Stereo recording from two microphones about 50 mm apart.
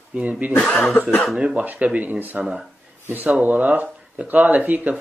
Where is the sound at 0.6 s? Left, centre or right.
Left.